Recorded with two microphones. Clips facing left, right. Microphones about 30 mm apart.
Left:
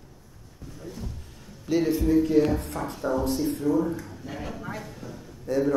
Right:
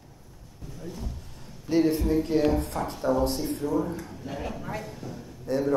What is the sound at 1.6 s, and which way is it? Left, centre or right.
A man's voice, right.